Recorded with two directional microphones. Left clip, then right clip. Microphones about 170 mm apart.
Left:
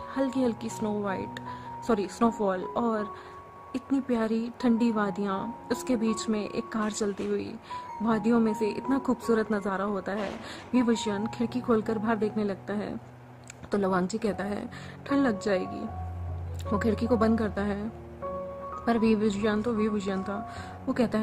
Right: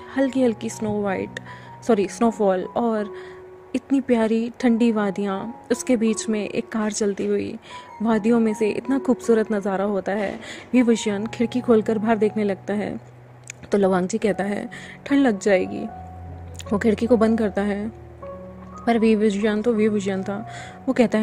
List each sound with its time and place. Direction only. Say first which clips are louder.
0.1 s a woman's voice: right 8 dB; 20° right (ahead or behind)
18.9 s a woman's voice: right 7 dB; 20° right (ahead or behind)